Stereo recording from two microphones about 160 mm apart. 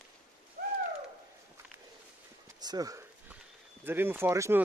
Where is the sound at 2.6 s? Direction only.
25° right (ahead or behind).